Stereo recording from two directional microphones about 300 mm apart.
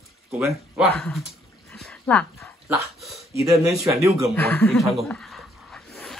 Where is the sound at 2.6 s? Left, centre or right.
Centre.